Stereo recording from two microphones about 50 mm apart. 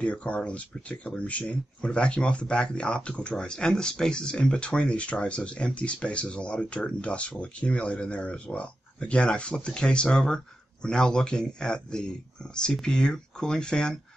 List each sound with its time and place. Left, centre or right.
0.0 s speech: left